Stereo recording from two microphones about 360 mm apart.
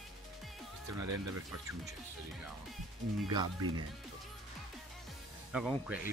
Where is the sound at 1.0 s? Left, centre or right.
Right.